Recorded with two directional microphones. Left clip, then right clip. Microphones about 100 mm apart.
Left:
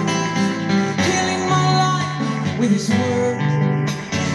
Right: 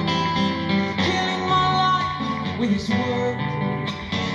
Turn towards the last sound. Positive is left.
turn(degrees=-30)  # may be behind; listen again after turning